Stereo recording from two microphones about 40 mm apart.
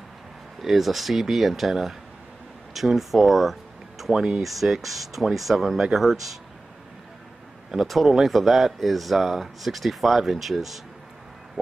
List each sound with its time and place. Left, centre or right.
0.6 s speech: centre
7.8 s speech: centre
11.6 s music: right